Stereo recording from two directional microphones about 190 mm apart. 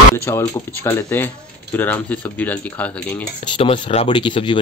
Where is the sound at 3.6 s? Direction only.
30° left (ahead or behind).